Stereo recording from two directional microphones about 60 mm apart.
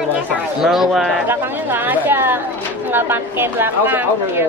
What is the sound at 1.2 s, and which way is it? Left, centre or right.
A woman's voice, right.